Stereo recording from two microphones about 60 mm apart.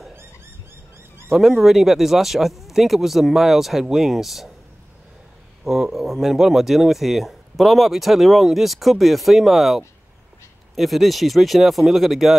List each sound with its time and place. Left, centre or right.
1.3 s speech: centre
5.6 s speech: centre